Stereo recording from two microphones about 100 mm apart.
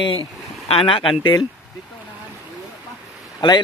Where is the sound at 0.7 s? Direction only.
60° left (ahead or behind).